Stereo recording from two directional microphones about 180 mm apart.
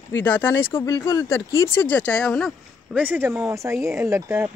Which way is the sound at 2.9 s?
10° right (ahead or behind).